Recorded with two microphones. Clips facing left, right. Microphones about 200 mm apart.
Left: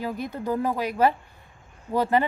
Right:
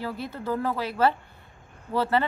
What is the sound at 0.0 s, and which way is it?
Speech, 15° left (ahead or behind).